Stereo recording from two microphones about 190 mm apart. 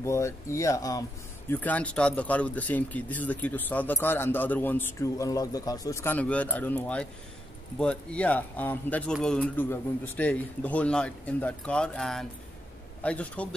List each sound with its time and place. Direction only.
0.0 s speech: 15° left (ahead or behind)